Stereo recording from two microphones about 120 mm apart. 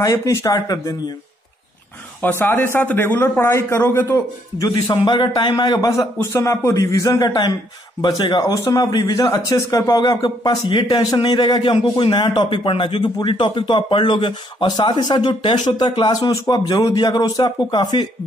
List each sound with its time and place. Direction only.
0.0 s speech: 25° left (ahead or behind)
2.2 s speech: 15° left (ahead or behind)
4.6 s speech: 30° left (ahead or behind)